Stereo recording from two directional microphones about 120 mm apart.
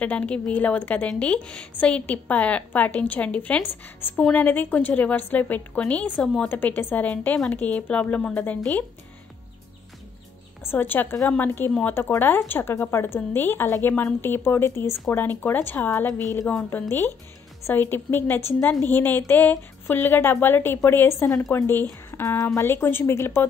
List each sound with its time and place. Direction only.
0.0 s a woman's voice: 10° left (ahead or behind)
10.6 s a woman's voice: 15° left (ahead or behind)